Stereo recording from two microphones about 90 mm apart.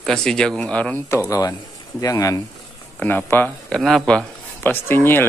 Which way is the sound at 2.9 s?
20° left (ahead or behind).